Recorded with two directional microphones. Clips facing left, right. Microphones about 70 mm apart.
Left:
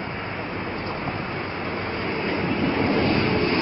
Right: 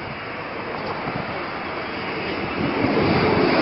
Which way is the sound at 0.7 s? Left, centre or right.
Centre.